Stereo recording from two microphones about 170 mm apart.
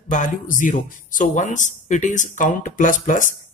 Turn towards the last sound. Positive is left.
turn(degrees=50)  # may be behind; listen again after turning